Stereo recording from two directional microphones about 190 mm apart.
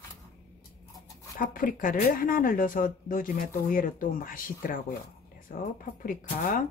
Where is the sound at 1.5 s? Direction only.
45° left (ahead or behind).